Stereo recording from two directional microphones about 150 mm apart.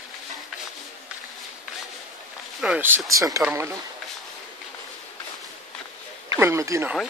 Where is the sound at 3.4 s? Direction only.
15° right (ahead or behind).